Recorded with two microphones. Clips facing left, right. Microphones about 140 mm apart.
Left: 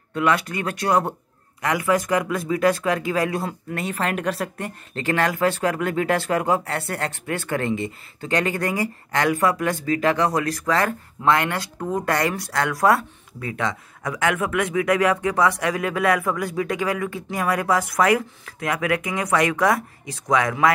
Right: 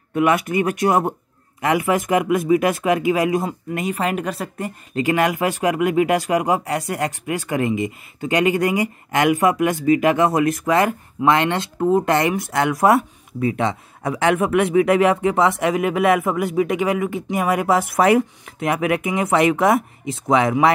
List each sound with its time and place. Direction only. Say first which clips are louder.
0.1 s speech: right 4 dB; 20° right (ahead or behind)